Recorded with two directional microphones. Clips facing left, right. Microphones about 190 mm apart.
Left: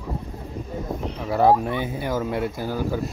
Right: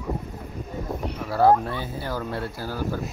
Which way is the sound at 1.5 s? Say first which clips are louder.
Left 2 dB; 15° left (ahead or behind).